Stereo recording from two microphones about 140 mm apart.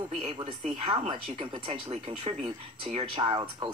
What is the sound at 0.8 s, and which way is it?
Speech, 40° right (ahead or behind).